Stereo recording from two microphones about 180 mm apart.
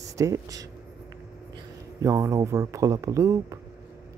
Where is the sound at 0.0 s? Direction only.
20° right (ahead or behind).